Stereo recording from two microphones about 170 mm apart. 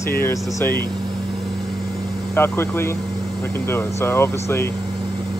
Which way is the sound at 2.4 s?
15° left (ahead or behind).